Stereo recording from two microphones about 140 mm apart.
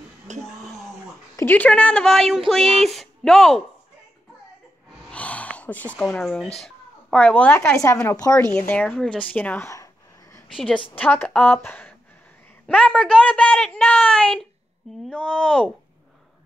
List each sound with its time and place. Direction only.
0.3 s a sound: 55° right (ahead or behind)
1.3 s a woman's voice: 15° left (ahead or behind)
5.1 s a sound: 10° left (ahead or behind)
6.6 s speech: 10° left (ahead or behind)
8.5 s a woman's voice: 10° left (ahead or behind)
10.5 s a woman's voice: centre (ahead or behind)